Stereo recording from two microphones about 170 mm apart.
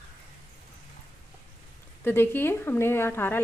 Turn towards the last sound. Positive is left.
turn(degrees=15)  # may be behind; listen again after turning